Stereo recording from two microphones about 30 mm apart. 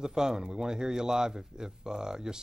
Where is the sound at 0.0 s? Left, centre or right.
Right.